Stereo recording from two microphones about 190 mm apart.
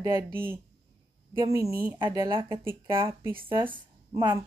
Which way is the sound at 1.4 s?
15° right (ahead or behind).